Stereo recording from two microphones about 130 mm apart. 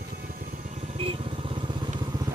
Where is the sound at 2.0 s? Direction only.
30° right (ahead or behind).